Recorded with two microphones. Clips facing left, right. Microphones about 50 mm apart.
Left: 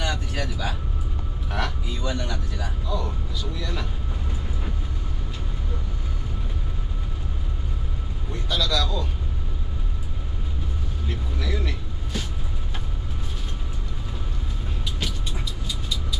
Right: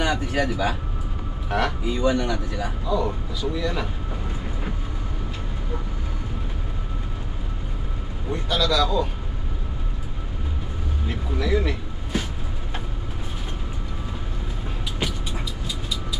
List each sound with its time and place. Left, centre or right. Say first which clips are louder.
0.0 s a sound: right 6 dB; centre
1.5 s speech: right 6 dB; centre
2.6 s speech: right 6 dB; centre
8.3 s speech: right 4 dB; centre
11.1 s speech: right 6 dB; centre
12.1 s vehicle: right 5 dB; centre
15.0 s vehicle: right 5 dB; centre